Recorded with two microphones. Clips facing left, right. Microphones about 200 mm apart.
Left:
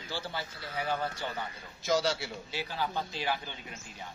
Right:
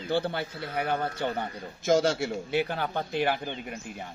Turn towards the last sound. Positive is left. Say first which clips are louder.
# right 8 dB
turn(degrees=-60)  # may be behind; listen again after turning